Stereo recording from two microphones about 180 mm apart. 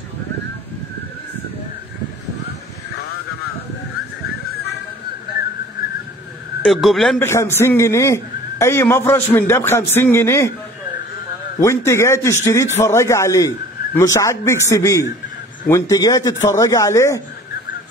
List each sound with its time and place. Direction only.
6.6 s a man's voice: centre (ahead or behind)
7.2 s a man's voice: 15° left (ahead or behind)
11.6 s a man's voice: 15° left (ahead or behind)